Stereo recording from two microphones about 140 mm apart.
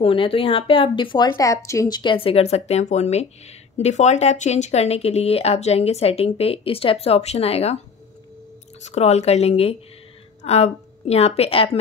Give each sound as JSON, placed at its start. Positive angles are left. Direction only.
{"t": 0.0, "sound": "speech", "side_deg": 40}
{"t": 1.3, "sound": "speech", "side_deg": 20}
{"t": 8.8, "sound": "a woman's voice", "side_deg": 55}